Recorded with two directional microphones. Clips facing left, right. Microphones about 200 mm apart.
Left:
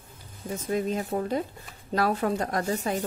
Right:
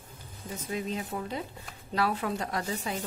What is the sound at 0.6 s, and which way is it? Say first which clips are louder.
Speech: left 6 dB; 50° left (ahead or behind).